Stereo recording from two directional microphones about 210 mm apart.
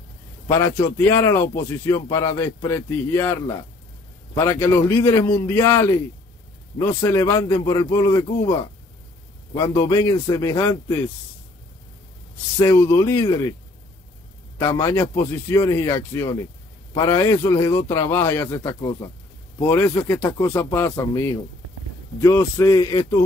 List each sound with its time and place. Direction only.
0.5 s a man's voice: 10° left (ahead or behind)
7.0 s a man's voice: 15° left (ahead or behind)
12.5 s a man's voice: 10° left (ahead or behind)
14.7 s a man's voice: 15° left (ahead or behind)